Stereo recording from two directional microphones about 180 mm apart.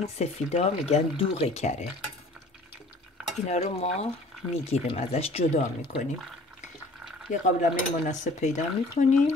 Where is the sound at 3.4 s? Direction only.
35° left (ahead or behind).